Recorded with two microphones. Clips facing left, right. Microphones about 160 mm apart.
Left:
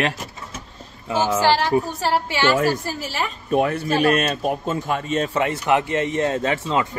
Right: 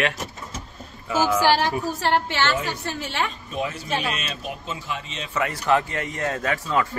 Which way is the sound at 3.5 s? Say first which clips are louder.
Left 8 dB; 60° left (ahead or behind).